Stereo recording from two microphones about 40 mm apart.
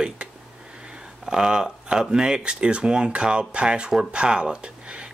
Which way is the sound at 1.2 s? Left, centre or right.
Centre.